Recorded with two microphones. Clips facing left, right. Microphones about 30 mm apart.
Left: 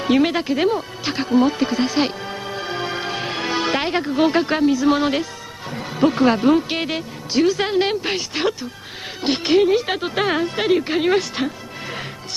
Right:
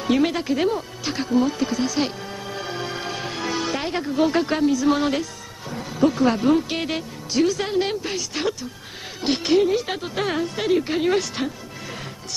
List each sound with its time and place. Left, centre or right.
0.0 s music: left
3.7 s speech: left
5.9 s speech: left